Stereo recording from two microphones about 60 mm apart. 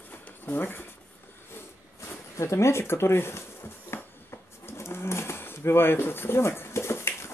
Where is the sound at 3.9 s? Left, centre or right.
Left.